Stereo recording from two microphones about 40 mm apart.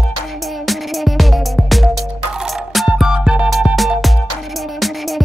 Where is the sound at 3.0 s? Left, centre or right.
Centre.